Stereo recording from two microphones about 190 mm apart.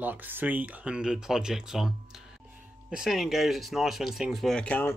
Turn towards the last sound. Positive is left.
turn(degrees=10)  # may be behind; listen again after turning